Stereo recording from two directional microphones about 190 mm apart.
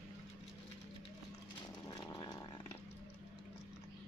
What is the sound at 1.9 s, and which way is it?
Chainsaw, 20° left (ahead or behind).